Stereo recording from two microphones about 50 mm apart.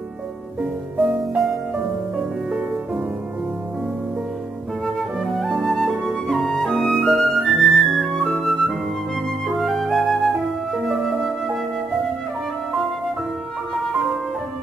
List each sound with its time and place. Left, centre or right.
0.6 s music: right
1.3 s music: centre
4.8 s flute: centre